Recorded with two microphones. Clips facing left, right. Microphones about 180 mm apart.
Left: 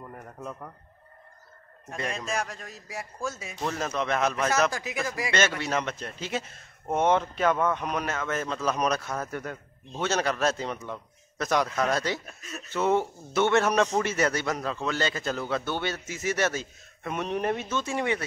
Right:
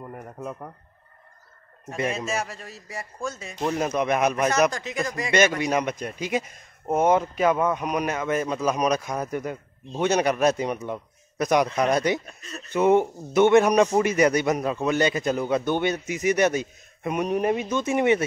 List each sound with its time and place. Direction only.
0.0 s a sound: 10° right (ahead or behind)
2.0 s speech: 5° right (ahead or behind)
3.6 s speech: 15° right (ahead or behind)
4.7 s speech: 5° left (ahead or behind)
5.6 s speech: 15° right (ahead or behind)
12.3 s speech: centre (ahead or behind)
12.7 s speech: 15° right (ahead or behind)